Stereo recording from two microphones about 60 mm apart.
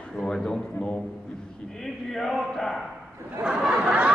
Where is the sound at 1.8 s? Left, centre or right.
Centre.